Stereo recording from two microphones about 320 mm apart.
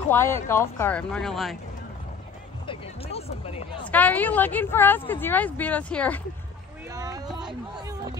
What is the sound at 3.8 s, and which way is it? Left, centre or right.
A woman's voice, centre.